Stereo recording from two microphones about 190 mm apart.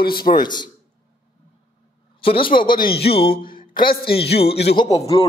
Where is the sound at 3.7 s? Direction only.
50° left (ahead or behind).